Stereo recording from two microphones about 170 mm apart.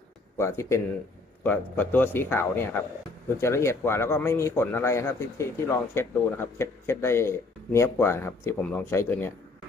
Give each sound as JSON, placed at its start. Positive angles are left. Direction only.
{"t": 0.4, "sound": "speech", "side_deg": 15}